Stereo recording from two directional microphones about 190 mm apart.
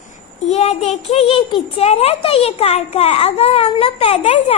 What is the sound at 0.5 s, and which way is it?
A child's voice, 35° left (ahead or behind).